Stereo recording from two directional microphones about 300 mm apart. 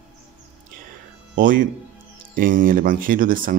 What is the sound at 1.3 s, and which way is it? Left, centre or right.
Speech, right.